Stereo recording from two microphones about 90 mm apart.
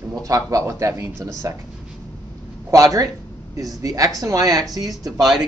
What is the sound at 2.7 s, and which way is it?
Speech, 40° right (ahead or behind).